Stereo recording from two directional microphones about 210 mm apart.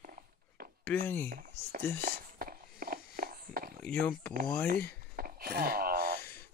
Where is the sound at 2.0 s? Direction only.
45° right (ahead or behind).